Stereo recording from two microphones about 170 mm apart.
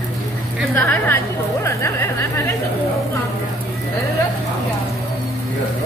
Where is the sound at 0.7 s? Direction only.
10° left (ahead or behind).